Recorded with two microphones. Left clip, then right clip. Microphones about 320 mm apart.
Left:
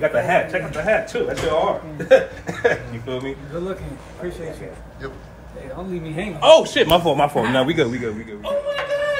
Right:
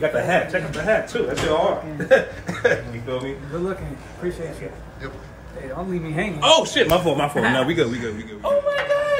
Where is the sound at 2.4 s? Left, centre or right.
Left.